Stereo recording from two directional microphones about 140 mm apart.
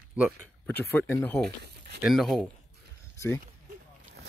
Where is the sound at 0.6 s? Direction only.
10° left (ahead or behind).